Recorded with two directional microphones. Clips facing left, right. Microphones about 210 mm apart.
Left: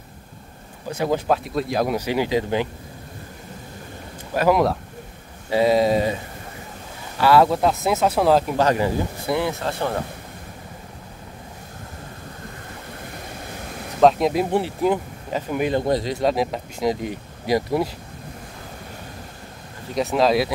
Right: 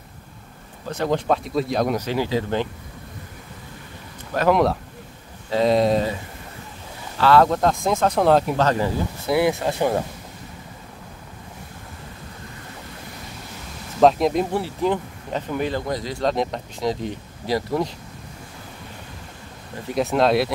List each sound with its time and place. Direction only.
0.8 s speech: 10° left (ahead or behind)
4.3 s speech: 5° left (ahead or behind)
7.2 s speech: 10° left (ahead or behind)
9.3 s speech: 15° right (ahead or behind)
14.0 s speech: centre (ahead or behind)
15.8 s a man's voice: 25° left (ahead or behind)
16.2 s speech: 5° left (ahead or behind)
20.0 s speech: centre (ahead or behind)